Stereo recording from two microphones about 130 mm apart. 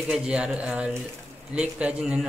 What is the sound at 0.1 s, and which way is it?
A man's voice, 5° right (ahead or behind).